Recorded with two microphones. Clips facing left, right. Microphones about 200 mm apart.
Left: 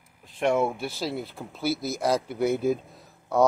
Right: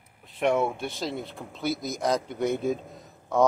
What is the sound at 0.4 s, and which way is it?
Speech, centre (ahead or behind).